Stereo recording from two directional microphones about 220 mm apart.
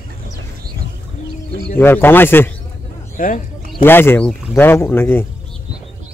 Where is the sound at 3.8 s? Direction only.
10° left (ahead or behind).